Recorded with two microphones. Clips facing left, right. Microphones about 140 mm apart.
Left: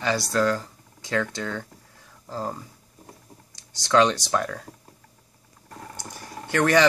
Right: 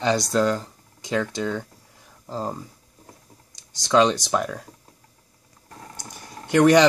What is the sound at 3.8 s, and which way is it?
Speech, 15° right (ahead or behind).